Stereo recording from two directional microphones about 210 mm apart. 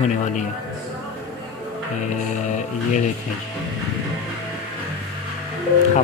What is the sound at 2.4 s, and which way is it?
Speech, 35° left (ahead or behind).